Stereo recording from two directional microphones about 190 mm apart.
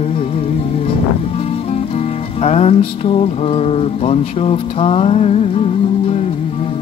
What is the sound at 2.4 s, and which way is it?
Music, 35° left (ahead or behind).